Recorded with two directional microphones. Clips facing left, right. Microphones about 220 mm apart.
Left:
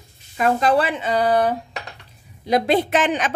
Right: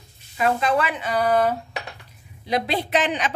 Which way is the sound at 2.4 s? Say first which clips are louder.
Left 6 dB; 45° left (ahead or behind).